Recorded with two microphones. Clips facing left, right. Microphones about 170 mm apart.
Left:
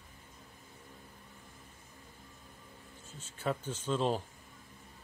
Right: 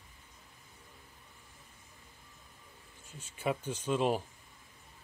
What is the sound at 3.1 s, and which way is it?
Speech, 10° right (ahead or behind).